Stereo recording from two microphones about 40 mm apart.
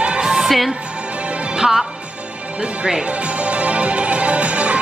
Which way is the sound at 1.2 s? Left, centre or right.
Right.